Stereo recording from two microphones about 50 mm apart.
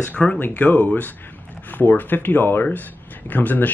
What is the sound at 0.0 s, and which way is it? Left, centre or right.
Speech, left.